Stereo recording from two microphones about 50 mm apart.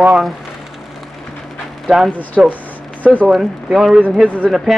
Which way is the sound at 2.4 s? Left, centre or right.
Centre.